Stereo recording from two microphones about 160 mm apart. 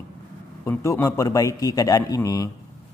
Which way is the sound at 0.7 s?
15° left (ahead or behind).